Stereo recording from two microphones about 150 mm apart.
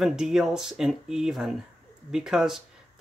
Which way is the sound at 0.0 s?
5° right (ahead or behind).